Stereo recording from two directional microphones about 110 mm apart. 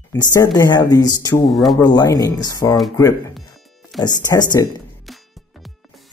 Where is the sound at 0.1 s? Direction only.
35° left (ahead or behind).